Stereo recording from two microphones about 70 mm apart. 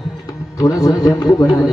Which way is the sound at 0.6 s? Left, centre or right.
Left.